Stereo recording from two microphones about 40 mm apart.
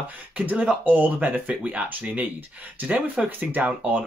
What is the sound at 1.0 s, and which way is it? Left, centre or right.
Speech, right.